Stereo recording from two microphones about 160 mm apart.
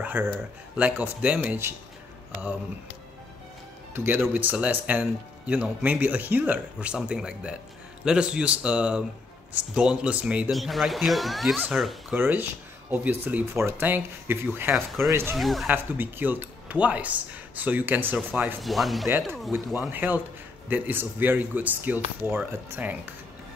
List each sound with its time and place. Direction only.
0.0 s speech: 10° right (ahead or behind)
3.9 s speech: 15° right (ahead or behind)
12.2 s speech: 10° right (ahead or behind)
15.3 s speech: centre (ahead or behind)
15.7 s speech: 10° right (ahead or behind)
19.9 s speech: 10° right (ahead or behind)